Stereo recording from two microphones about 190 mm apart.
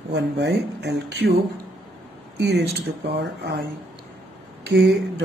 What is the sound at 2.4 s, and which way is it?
A man's voice, 65° right (ahead or behind).